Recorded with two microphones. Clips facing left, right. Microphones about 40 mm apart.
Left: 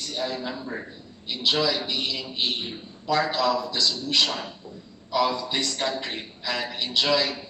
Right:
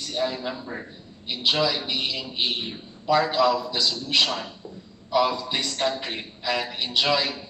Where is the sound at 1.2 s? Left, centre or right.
Centre.